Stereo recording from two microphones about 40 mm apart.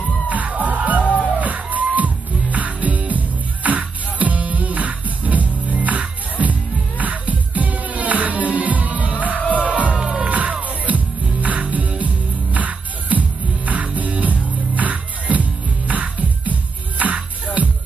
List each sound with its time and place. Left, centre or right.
0.3 s music: right
1.0 s music: left
1.4 s music: right